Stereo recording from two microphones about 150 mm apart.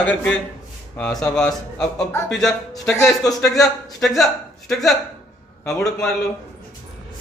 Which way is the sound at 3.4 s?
5° left (ahead or behind).